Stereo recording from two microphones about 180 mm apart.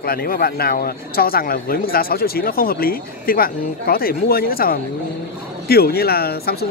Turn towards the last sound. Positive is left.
turn(degrees=60)  # may be behind; listen again after turning